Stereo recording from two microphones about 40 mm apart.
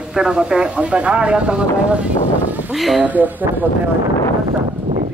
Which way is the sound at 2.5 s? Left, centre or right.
Right.